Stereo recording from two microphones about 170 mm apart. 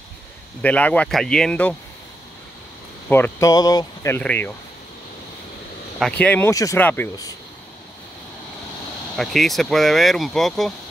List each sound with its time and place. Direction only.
0.6 s speech: 10° left (ahead or behind)
3.1 s speech: 15° left (ahead or behind)
5.9 s speech: 5° left (ahead or behind)
9.1 s speech: centre (ahead or behind)